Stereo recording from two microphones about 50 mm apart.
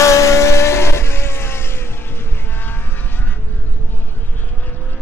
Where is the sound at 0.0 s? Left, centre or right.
Left.